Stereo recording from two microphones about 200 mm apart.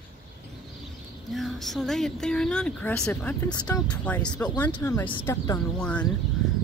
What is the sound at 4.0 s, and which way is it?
Speech, 5° left (ahead or behind).